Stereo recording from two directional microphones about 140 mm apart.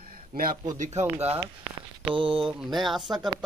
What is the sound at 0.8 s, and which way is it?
Speech, 55° right (ahead or behind).